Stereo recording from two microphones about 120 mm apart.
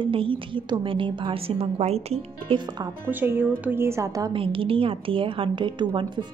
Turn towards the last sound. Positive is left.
turn(degrees=-40)  # may be behind; listen again after turning